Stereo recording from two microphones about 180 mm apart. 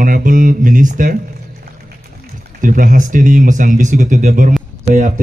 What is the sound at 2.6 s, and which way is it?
Speech, 45° right (ahead or behind).